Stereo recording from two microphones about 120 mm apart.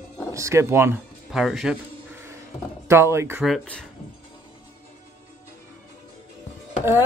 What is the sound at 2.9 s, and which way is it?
Speech, 20° right (ahead or behind).